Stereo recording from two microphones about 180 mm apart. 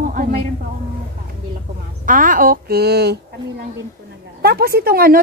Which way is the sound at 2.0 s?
50° right (ahead or behind).